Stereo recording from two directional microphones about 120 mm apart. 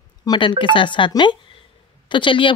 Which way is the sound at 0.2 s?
35° left (ahead or behind).